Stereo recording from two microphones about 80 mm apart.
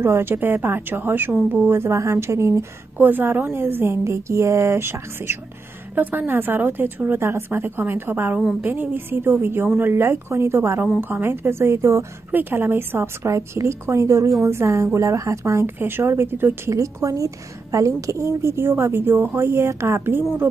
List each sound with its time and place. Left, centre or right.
0.0 s a woman's voice: right
3.0 s a woman's voice: right
12.3 s a woman's voice: right
16.7 s a woman's voice: right